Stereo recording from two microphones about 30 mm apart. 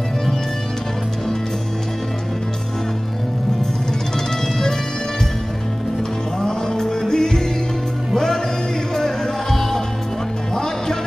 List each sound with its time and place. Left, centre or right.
6.4 s music: left
8.9 s music: centre